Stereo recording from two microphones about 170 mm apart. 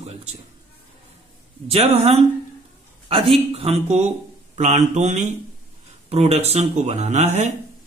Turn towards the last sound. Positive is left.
turn(degrees=-40)  # may be behind; listen again after turning